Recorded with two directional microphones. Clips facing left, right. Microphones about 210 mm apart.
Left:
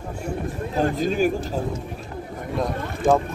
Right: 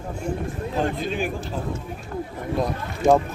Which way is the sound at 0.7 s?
40° left (ahead or behind).